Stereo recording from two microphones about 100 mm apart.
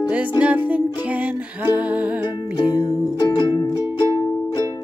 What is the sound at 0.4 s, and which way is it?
Music, 15° right (ahead or behind).